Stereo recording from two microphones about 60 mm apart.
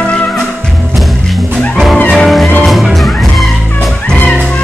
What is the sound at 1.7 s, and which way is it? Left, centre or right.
Music, centre.